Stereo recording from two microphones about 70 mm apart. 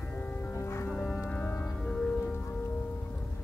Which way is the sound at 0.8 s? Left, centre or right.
Left.